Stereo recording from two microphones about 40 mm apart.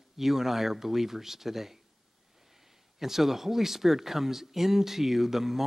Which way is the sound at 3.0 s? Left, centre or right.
Centre.